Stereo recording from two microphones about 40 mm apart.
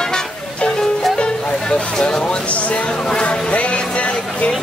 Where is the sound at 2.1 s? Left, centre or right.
Left.